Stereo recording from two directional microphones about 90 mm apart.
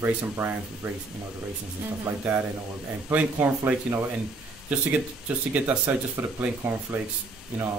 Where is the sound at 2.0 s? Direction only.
25° right (ahead or behind).